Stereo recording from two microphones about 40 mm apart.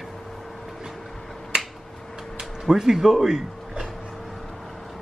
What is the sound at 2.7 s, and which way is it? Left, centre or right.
Speech, centre.